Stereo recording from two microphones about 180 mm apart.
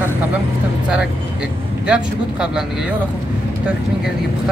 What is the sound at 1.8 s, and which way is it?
Speech, 5° right (ahead or behind).